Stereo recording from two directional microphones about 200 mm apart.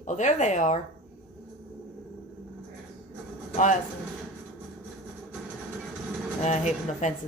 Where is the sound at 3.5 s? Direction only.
40° left (ahead or behind).